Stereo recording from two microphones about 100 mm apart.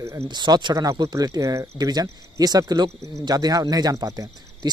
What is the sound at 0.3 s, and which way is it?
Speech, 50° right (ahead or behind).